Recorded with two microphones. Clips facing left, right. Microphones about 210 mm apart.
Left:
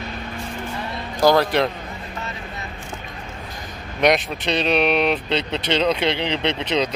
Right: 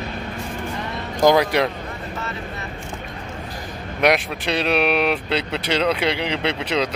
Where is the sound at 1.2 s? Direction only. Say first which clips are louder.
Even; 15° right (ahead or behind).